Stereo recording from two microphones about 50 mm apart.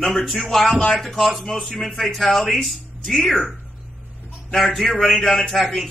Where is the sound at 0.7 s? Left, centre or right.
Left.